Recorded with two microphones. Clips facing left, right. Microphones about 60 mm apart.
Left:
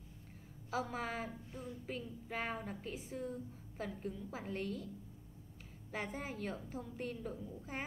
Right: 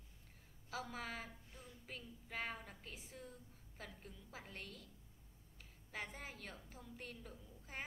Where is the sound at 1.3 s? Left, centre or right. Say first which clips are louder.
Left 11 dB; left.